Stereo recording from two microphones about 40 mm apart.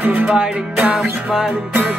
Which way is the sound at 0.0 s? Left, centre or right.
Right.